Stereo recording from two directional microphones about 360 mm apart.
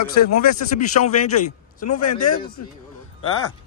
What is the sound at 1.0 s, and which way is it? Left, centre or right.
Speech, left.